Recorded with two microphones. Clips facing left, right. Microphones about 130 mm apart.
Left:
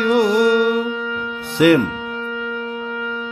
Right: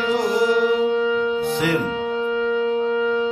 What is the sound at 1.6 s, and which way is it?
Music, 75° left (ahead or behind).